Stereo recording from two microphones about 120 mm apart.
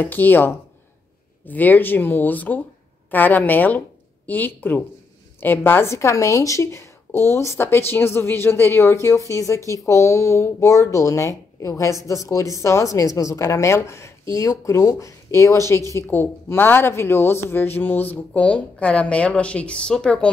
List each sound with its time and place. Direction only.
0.0 s speech: 15° left (ahead or behind)